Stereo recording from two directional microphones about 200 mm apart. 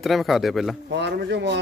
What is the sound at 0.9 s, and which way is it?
Speech, 60° right (ahead or behind).